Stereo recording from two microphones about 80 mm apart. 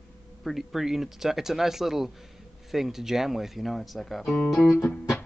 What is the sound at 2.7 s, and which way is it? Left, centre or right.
Speech, centre.